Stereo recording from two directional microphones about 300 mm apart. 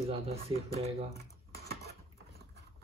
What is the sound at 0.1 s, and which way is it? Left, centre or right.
Speech, centre.